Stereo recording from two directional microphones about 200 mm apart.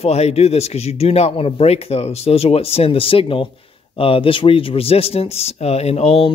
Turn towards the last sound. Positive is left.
turn(degrees=30)  # may be behind; listen again after turning